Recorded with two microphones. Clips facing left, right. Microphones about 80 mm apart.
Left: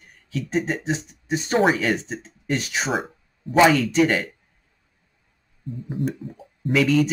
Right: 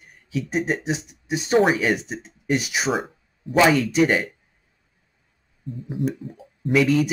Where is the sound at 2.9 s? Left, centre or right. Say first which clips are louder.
Right 1 dB; centre.